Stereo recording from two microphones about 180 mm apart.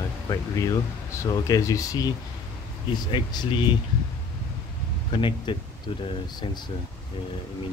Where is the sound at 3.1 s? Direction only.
25° left (ahead or behind).